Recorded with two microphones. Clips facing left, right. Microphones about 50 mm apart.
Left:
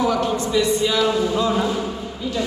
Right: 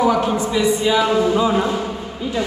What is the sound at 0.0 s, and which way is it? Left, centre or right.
Speech, centre.